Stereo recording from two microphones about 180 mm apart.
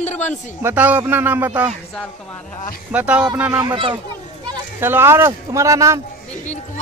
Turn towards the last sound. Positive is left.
turn(degrees=-15)  # may be behind; listen again after turning